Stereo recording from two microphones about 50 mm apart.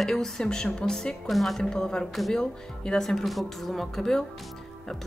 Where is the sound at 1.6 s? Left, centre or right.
Centre.